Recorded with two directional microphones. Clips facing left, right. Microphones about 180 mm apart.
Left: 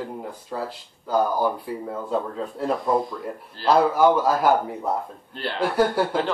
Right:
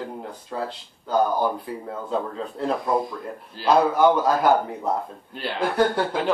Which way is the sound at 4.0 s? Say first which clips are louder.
Even; centre (ahead or behind).